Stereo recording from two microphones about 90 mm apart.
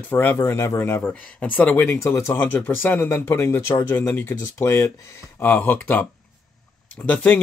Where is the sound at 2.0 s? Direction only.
35° left (ahead or behind).